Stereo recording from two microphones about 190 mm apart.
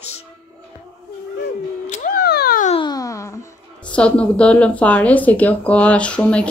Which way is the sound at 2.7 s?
20° left (ahead or behind).